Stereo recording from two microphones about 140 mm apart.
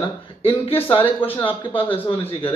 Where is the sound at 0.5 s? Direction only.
40° left (ahead or behind).